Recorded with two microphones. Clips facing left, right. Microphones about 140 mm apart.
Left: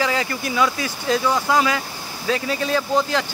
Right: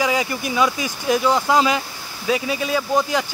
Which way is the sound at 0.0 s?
15° right (ahead or behind).